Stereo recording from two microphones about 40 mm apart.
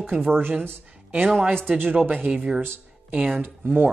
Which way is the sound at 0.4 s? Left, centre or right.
Right.